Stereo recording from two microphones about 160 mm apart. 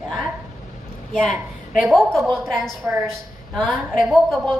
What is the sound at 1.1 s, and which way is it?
A woman's voice, centre (ahead or behind).